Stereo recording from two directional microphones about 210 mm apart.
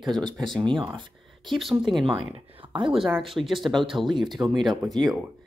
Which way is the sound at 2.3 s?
25° right (ahead or behind).